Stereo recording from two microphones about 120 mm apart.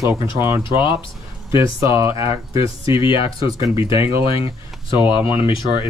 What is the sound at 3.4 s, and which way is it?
Speech, 30° right (ahead or behind).